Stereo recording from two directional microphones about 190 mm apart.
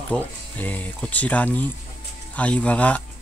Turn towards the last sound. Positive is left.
turn(degrees=5)  # may be behind; listen again after turning